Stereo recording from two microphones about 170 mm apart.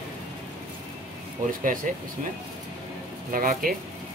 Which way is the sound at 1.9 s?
50° right (ahead or behind).